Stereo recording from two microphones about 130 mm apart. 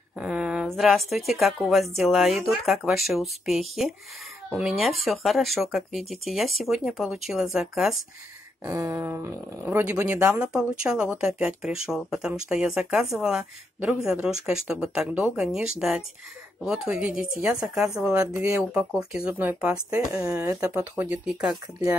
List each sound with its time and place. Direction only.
0.2 s a sound: 5° right (ahead or behind)
0.7 s a woman's voice: centre (ahead or behind)
8.6 s a woman's voice: 20° right (ahead or behind)
20.1 s speech: 25° right (ahead or behind)